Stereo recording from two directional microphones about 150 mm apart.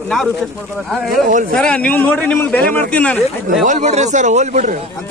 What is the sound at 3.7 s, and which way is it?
Speech, 50° right (ahead or behind).